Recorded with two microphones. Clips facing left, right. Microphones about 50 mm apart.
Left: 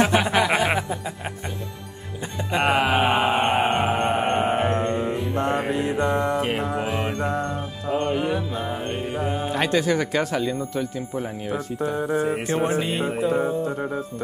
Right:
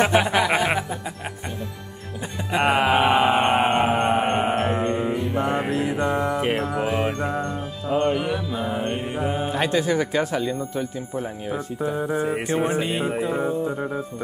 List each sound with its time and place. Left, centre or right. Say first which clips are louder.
0.0 s a sound: even; centre
2.5 s mantra: right 1 dB; centre
8.1 s mantra: even; centre
8.8 s mantra: right 1 dB; centre
9.7 s speech: left 1 dB; right
11.8 s music: left 1 dB; centre